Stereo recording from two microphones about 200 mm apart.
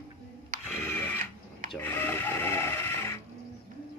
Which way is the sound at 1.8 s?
10° left (ahead or behind).